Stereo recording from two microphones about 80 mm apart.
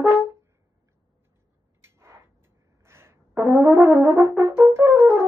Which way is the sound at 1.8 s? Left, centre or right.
Right.